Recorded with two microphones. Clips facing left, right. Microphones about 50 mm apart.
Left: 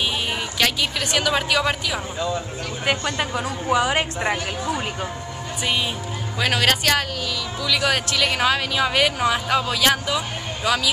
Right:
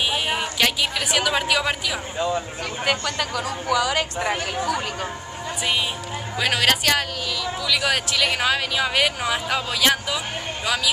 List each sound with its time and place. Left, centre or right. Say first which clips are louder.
0.1 s a woman's voice: right 2 dB; centre
2.1 s speech: right 4 dB; centre
3.0 s a woman's voice: left 1 dB; left
6.4 s speech: left 1 dB; centre